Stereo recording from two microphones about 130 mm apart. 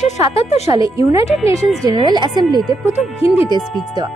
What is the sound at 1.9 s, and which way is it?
Speech, 35° right (ahead or behind).